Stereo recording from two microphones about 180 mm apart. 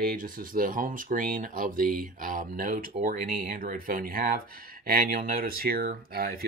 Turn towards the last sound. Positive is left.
turn(degrees=-55)  # may be behind; listen again after turning